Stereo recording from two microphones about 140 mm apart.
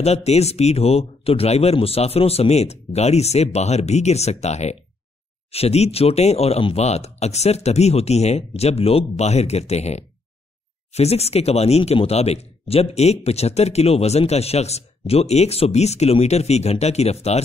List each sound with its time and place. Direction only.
0.0 s speech: 50° left (ahead or behind)